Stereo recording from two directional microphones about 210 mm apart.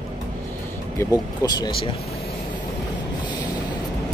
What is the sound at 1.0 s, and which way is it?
Speech, 15° left (ahead or behind).